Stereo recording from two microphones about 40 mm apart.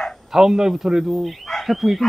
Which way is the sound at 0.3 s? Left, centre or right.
Centre.